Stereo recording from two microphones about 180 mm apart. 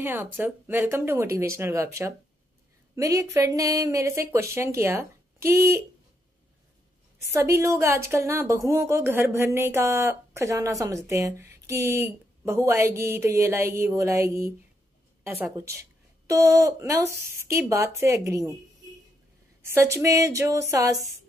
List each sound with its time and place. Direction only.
0.0 s a woman's voice: 10° right (ahead or behind)
3.0 s a woman's voice: 15° right (ahead or behind)
7.3 s a woman's voice: 15° right (ahead or behind)
19.6 s a woman's voice: 15° right (ahead or behind)